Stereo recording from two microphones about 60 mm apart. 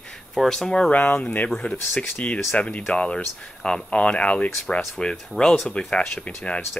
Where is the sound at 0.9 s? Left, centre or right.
Left.